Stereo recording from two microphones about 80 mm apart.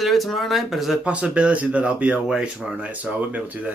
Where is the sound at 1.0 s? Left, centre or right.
Centre.